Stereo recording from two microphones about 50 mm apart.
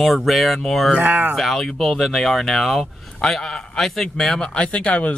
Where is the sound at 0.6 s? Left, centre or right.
Centre.